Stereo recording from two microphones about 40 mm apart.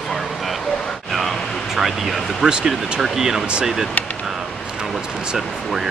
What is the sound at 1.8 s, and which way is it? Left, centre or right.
Speech, centre.